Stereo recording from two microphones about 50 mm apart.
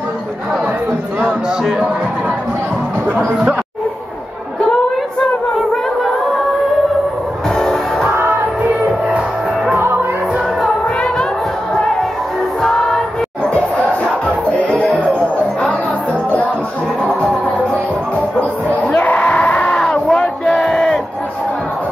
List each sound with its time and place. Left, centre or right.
7.4 s music: centre
8.1 s music: right
12.6 s choir: centre
13.5 s crowd: left
14.6 s music: left
18.9 s a sound: left; by 21.0 s centre